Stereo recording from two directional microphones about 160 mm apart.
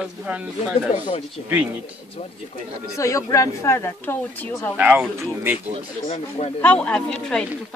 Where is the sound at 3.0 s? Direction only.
20° left (ahead or behind).